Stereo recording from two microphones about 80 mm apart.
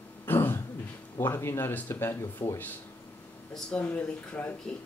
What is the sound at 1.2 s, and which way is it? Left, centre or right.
Speech, left.